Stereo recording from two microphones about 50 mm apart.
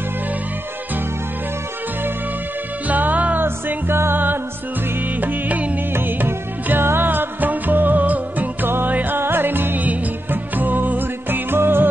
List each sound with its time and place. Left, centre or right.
2.9 s music: right
3.3 s music: right
4.8 s music: right
5.9 s music: right
8.6 s music: right